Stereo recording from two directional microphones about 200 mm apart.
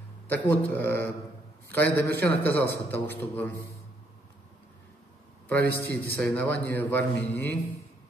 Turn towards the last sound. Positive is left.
turn(degrees=10)  # may be behind; listen again after turning